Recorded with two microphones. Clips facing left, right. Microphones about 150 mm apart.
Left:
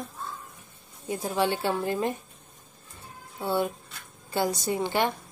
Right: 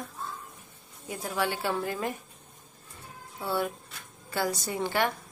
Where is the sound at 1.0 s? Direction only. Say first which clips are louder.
Left 4 dB; 25° left (ahead or behind).